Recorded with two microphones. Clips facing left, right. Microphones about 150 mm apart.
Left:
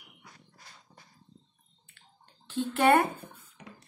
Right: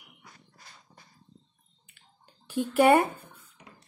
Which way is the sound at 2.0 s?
10° right (ahead or behind).